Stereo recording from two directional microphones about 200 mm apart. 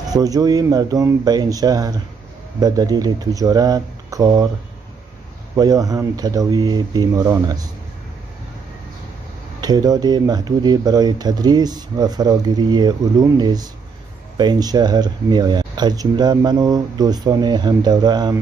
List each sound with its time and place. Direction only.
0.1 s speech: 20° right (ahead or behind)
5.6 s speech: 20° right (ahead or behind)
9.6 s speech: 20° right (ahead or behind)